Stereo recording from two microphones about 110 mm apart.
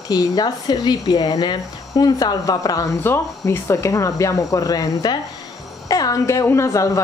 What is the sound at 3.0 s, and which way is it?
A woman's voice, 20° left (ahead or behind).